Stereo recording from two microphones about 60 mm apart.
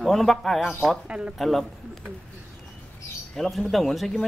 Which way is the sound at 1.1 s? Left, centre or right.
Centre.